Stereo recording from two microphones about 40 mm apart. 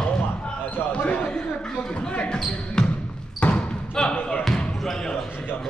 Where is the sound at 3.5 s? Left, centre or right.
Centre.